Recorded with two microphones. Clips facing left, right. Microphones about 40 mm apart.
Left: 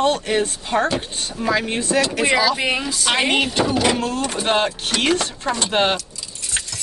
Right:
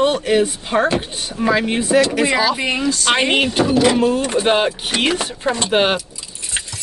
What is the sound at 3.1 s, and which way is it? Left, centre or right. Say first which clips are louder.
Speech: even; centre.